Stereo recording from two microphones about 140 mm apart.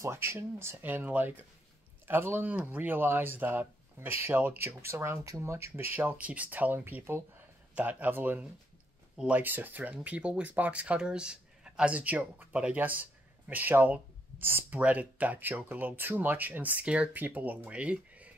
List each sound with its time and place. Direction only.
0.0 s speech: 20° right (ahead or behind)